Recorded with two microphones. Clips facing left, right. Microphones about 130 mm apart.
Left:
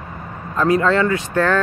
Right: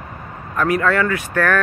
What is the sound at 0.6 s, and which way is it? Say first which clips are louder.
Speech: left 2 dB; 25° left (ahead or behind).